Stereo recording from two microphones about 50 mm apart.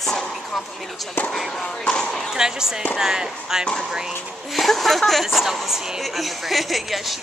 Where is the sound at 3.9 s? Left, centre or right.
Centre.